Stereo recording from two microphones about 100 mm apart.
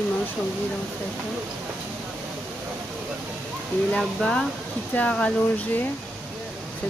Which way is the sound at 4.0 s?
5° left (ahead or behind).